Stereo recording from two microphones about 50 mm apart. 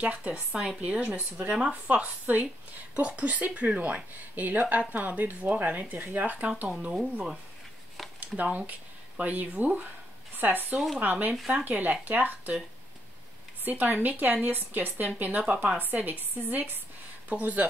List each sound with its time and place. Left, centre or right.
0.0 s a woman's voice: right
13.7 s speech: right